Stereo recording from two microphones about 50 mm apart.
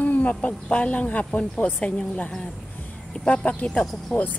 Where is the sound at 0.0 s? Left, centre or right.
Left.